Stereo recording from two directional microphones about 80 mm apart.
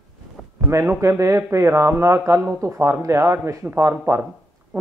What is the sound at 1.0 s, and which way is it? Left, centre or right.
A man's voice, right.